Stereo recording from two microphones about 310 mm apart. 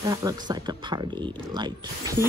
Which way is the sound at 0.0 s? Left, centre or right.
Centre.